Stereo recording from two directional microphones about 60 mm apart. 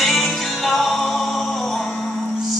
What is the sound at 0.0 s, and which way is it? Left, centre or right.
Music, centre.